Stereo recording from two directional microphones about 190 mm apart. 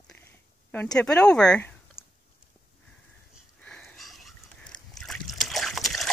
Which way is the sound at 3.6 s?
5° left (ahead or behind).